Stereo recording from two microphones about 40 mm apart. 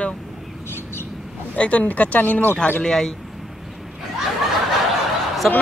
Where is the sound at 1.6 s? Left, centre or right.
Left.